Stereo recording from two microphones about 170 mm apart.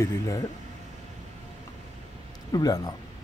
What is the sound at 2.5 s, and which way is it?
Speech, 20° left (ahead or behind).